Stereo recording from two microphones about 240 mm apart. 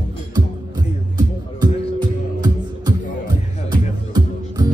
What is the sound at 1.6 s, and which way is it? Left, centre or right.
Music, centre.